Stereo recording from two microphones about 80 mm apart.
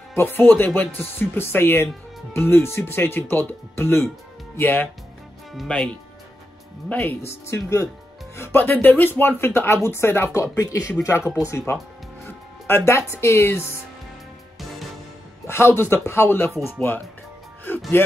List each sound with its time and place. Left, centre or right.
0.1 s speech: left
6.9 s speech: left
7.2 s speech: left
15.4 s speech: left
17.7 s music: left